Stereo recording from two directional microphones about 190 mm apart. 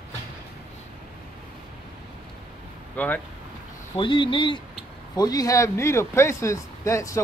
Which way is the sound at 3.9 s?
25° left (ahead or behind).